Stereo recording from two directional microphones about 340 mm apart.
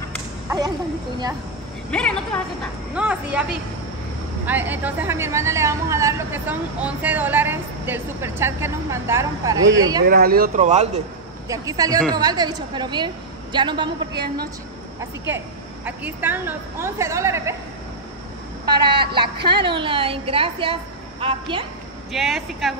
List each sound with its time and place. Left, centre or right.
0.5 s a sound: centre
1.9 s a woman's voice: centre
4.5 s speech: centre
10.0 s speech: right
11.4 s speech: centre
14.1 s speech: right
15.0 s speech: centre
18.7 s speech: centre
22.1 s a woman's voice: centre